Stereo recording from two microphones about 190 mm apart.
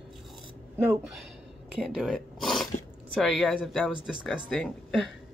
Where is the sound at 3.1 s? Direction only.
Centre (ahead or behind).